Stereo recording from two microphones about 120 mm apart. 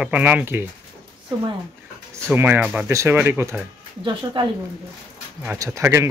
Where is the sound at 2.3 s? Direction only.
15° right (ahead or behind).